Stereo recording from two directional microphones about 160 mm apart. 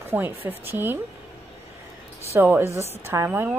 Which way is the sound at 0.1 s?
10° right (ahead or behind).